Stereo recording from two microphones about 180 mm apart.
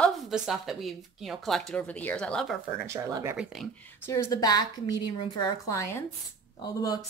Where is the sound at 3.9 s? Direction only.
15° left (ahead or behind).